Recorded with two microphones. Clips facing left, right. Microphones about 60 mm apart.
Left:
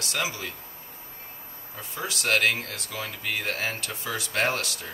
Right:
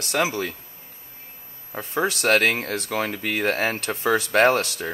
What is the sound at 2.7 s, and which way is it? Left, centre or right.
Speech, right.